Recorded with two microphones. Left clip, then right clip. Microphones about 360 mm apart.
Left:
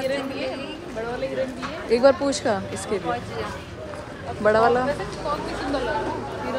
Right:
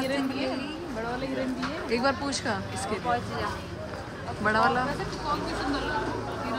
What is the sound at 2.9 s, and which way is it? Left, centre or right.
Speech, right.